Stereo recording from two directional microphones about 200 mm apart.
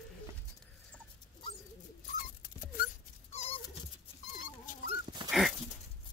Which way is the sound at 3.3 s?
35° left (ahead or behind).